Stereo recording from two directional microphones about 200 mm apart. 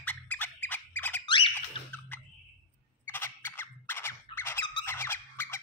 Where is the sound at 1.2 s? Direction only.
25° left (ahead or behind).